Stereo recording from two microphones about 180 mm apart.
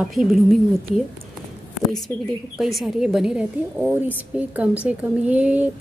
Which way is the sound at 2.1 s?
15° left (ahead or behind).